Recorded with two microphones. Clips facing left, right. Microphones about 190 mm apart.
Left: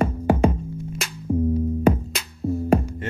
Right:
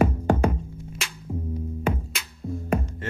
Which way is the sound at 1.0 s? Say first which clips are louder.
Left 11 dB; 40° left (ahead or behind).